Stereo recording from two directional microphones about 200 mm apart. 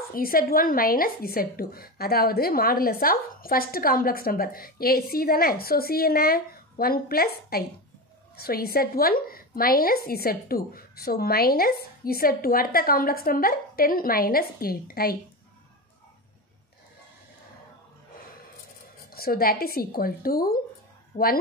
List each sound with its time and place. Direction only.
0.1 s speech: 45° left (ahead or behind)
19.1 s a woman's voice: 50° left (ahead or behind)